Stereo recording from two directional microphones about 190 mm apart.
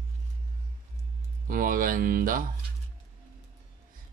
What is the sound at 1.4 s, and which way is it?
Speech, 45° right (ahead or behind).